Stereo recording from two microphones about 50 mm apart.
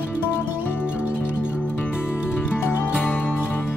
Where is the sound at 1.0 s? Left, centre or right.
Right.